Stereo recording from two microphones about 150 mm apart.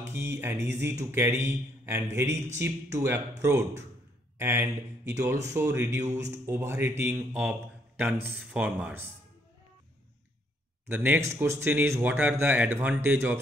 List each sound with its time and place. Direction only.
0.0 s a man's voice: 15° right (ahead or behind)
10.9 s a man's voice: 15° right (ahead or behind)